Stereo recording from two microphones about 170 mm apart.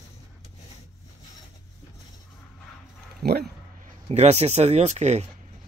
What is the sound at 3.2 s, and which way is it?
Speech, 65° right (ahead or behind).